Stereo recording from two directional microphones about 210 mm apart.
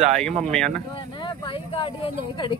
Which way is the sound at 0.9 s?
20° left (ahead or behind).